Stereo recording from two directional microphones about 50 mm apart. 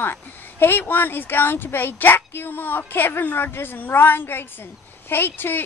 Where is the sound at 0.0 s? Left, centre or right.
Left.